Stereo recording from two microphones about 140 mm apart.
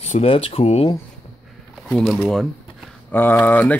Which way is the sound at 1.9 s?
5° left (ahead or behind).